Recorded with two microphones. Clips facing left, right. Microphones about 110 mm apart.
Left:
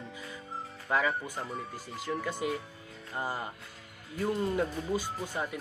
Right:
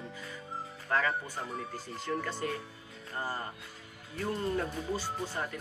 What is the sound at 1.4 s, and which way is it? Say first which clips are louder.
Speech: even; centre (ahead or behind).